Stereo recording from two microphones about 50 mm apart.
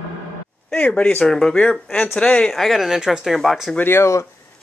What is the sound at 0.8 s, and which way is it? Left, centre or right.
Speech, left.